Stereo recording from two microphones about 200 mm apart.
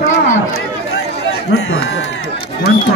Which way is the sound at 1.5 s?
60° left (ahead or behind).